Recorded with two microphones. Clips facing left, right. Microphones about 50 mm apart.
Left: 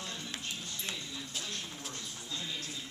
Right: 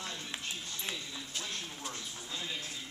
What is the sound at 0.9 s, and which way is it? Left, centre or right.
Speech, centre.